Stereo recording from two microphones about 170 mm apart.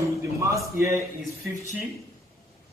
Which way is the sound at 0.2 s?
15° right (ahead or behind).